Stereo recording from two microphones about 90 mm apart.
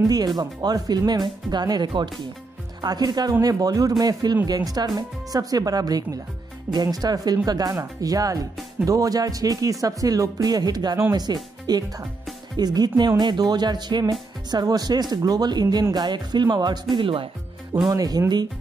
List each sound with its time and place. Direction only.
0.4 s speech: 45° right (ahead or behind)
16.9 s speech: 75° right (ahead or behind)
17.8 s speech: 45° right (ahead or behind)